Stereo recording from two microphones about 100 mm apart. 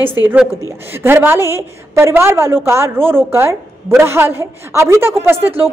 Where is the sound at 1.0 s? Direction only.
25° right (ahead or behind).